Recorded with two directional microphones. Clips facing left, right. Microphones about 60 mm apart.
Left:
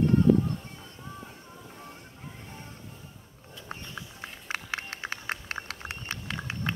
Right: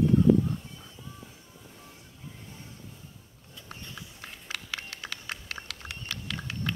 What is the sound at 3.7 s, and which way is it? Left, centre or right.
Run, left.